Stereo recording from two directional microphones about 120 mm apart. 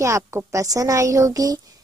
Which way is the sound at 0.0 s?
25° right (ahead or behind).